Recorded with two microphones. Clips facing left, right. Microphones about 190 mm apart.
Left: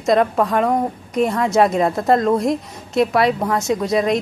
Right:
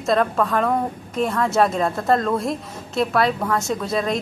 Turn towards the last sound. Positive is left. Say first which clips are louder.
# left 5 dB
turn(degrees=15)  # may be behind; listen again after turning